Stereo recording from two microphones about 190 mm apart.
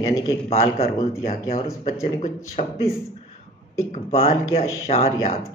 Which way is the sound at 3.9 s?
35° left (ahead or behind).